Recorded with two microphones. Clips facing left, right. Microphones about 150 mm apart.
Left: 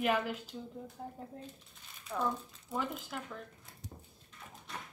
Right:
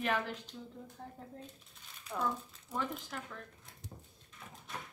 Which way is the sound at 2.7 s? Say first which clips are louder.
Left 1 dB; 5° left (ahead or behind).